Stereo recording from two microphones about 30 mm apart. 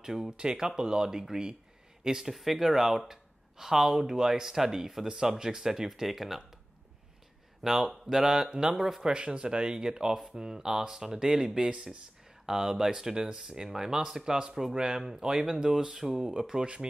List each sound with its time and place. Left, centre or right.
0.0 s speech: centre
0.4 s speech: right
2.2 s speech: centre
5.0 s speech: right
5.7 s speech: centre
7.6 s speech: centre
9.0 s speech: right
12.4 s speech: centre